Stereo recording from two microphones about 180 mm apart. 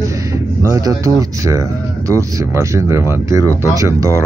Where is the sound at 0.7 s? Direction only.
15° right (ahead or behind).